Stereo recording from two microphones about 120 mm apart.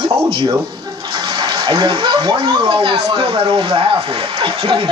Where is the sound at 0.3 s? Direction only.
45° right (ahead or behind).